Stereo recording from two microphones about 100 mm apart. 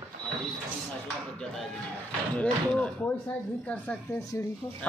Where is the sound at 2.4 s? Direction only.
15° left (ahead or behind).